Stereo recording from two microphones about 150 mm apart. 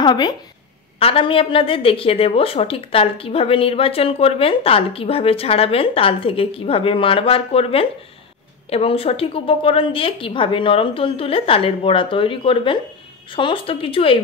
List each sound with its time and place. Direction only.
0.0 s a woman's voice: 30° left (ahead or behind)
0.9 s a woman's voice: 40° left (ahead or behind)